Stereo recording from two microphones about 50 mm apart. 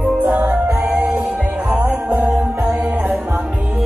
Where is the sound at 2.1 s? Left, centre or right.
Right.